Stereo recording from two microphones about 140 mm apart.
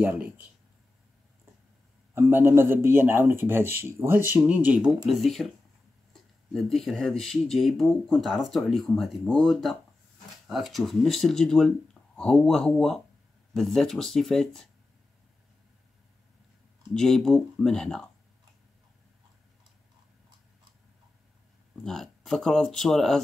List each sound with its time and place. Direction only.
0.0 s speech: 15° right (ahead or behind)
2.1 s speech: 15° right (ahead or behind); by 5.5 s centre (ahead or behind)
6.5 s speech: centre (ahead or behind)
16.9 s speech: 5° left (ahead or behind)
21.8 s speech: centre (ahead or behind)